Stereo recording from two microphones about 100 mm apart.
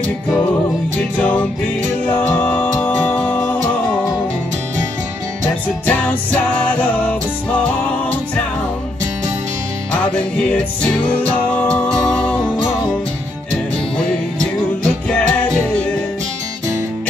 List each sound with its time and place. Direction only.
1.1 s music: 20° left (ahead or behind)
5.9 s music: 15° left (ahead or behind)
10.3 s music: 10° left (ahead or behind)
15.0 s music: 15° left (ahead or behind)